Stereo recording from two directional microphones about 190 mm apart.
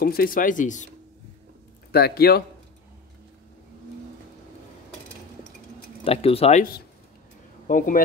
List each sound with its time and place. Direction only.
0.0 s speech: 50° left (ahead or behind)
1.9 s speech: 55° left (ahead or behind)
6.0 s speech: 30° left (ahead or behind)
7.6 s speech: 45° left (ahead or behind)